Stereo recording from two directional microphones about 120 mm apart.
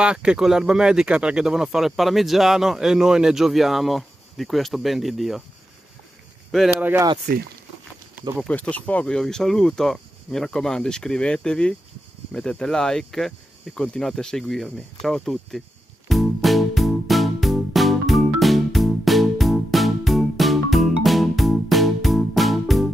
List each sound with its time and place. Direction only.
0.0 s speech: 10° right (ahead or behind)
6.8 s speech: 15° right (ahead or behind)
8.5 s speech: 10° left (ahead or behind)
16.1 s music: centre (ahead or behind)